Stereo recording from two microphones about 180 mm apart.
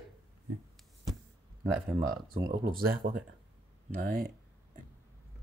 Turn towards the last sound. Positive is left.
turn(degrees=-50)  # may be behind; listen again after turning